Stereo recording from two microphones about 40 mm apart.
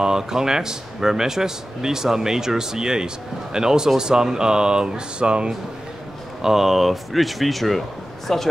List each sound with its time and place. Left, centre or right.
0.0 s speech: centre
6.4 s speech: centre